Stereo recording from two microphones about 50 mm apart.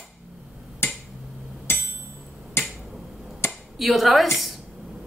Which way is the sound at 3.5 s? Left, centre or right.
Centre.